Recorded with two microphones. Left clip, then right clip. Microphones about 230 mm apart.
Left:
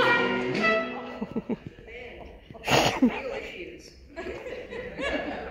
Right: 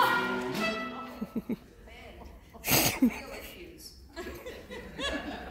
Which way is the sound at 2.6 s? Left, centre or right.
Right.